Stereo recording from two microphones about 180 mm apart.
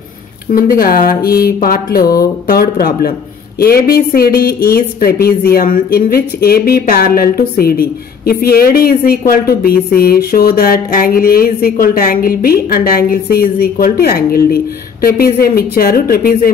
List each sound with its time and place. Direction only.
0.5 s a woman's voice: 50° left (ahead or behind)